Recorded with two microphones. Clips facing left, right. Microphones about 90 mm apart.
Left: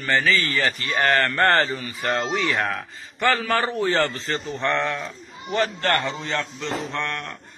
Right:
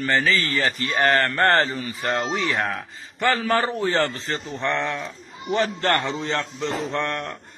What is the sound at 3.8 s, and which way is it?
A man's voice, 20° right (ahead or behind).